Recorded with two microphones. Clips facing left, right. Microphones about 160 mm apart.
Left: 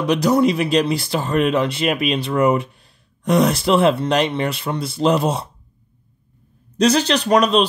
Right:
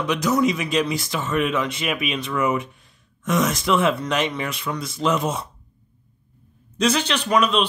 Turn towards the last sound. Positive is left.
turn(degrees=35)  # may be behind; listen again after turning